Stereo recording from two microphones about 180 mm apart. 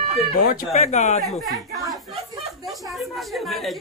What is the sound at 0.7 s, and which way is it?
Speech, 40° left (ahead or behind).